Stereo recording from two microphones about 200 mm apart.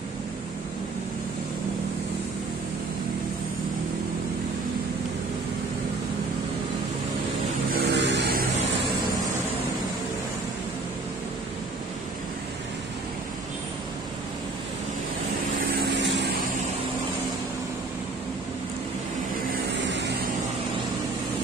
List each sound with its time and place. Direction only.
7.7 s vehicle: 55° right (ahead or behind)
15.7 s vehicle: 55° right (ahead or behind)